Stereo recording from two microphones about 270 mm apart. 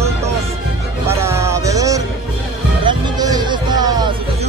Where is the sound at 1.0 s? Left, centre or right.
Centre.